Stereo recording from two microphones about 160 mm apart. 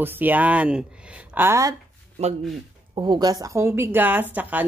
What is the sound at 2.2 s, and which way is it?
Speech, 40° right (ahead or behind).